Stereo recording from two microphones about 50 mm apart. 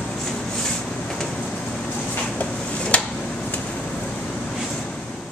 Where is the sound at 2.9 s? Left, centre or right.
Left.